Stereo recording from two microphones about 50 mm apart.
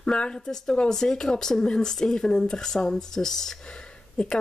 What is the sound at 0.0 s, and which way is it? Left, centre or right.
Speech, centre.